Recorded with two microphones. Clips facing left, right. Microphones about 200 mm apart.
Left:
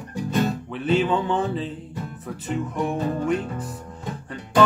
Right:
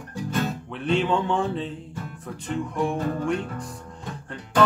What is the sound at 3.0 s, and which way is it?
Music, 20° left (ahead or behind).